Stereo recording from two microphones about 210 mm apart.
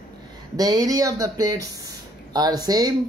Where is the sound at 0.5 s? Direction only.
15° right (ahead or behind).